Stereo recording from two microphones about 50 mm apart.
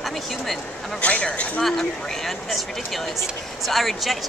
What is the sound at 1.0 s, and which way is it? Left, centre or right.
Speech, left.